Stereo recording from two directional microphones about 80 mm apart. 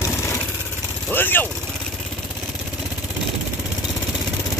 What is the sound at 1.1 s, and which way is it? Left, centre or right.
Speech, left.